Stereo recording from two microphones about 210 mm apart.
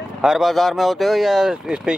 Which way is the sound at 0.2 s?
Centre (ahead or behind).